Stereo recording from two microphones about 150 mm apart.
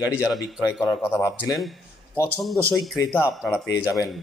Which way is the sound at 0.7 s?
Centre (ahead or behind).